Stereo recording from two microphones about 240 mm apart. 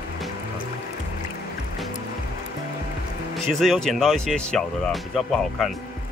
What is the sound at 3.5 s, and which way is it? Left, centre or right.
Speech, centre.